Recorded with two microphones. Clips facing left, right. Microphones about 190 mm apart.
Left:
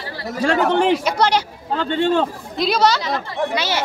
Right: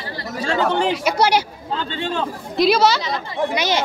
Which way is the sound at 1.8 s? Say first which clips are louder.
Left 8 dB; 55° left (ahead or behind).